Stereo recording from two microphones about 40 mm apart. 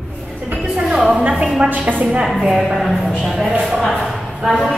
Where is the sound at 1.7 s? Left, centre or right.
Right.